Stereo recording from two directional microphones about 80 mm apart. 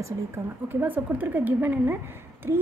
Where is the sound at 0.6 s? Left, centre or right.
Right.